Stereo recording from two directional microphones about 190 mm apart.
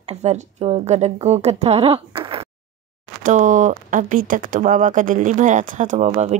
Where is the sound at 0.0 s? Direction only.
35° right (ahead or behind).